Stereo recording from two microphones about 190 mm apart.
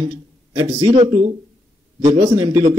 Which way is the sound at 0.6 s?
25° right (ahead or behind).